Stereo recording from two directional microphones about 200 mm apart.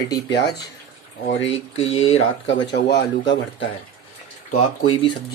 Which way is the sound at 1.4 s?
75° left (ahead or behind).